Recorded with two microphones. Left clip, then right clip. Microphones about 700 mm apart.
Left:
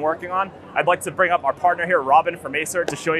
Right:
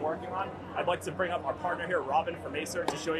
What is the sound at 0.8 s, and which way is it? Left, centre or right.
Speech, left.